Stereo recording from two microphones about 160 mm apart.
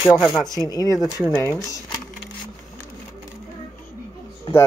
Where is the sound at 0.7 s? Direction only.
20° left (ahead or behind).